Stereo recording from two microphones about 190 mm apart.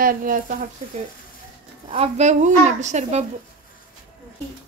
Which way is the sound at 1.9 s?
35° right (ahead or behind).